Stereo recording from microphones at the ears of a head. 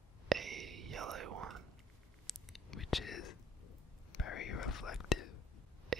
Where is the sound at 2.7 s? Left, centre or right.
Left.